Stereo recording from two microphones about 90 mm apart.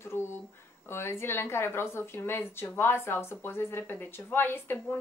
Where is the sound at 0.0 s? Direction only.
30° left (ahead or behind).